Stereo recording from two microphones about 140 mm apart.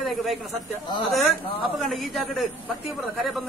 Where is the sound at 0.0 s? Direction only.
Centre (ahead or behind).